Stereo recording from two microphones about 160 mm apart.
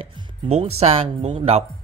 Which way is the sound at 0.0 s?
40° right (ahead or behind).